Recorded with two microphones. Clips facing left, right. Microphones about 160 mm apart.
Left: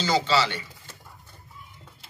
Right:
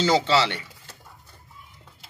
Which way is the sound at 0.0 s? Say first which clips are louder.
Right 3 dB; 85° right.